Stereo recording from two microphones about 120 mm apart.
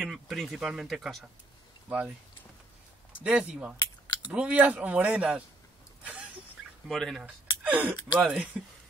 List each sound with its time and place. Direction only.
0.0 s speech: centre (ahead or behind)
3.3 s speech: 10° right (ahead or behind)
3.7 s a sound: 35° left (ahead or behind)
4.3 s speech: 10° right (ahead or behind)
6.9 s speech: 5° left (ahead or behind)
7.6 s speech: 15° right (ahead or behind)